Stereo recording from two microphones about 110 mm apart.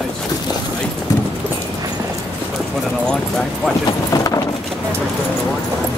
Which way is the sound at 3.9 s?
35° left (ahead or behind).